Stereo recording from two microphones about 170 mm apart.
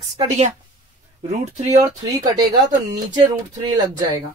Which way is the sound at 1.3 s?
45° right (ahead or behind).